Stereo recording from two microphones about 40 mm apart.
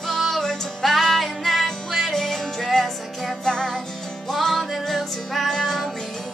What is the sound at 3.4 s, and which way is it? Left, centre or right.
Music, centre.